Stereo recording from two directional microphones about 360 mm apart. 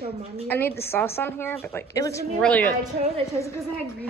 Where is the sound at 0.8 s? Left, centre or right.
Centre.